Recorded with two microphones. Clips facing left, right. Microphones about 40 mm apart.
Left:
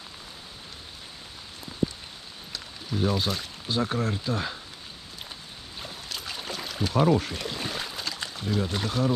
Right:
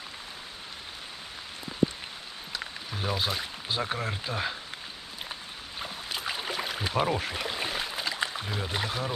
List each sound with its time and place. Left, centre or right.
2.9 s speech: centre
5.8 s boat: centre